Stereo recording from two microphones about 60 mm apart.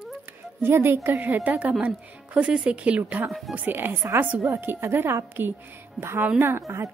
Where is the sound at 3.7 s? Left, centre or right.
Right.